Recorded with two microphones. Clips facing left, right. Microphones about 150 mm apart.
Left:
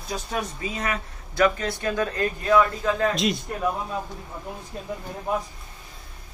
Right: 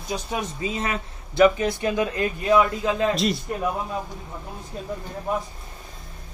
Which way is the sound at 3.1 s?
Centre (ahead or behind).